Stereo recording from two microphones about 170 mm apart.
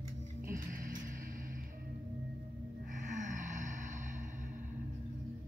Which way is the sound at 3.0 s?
45° right (ahead or behind).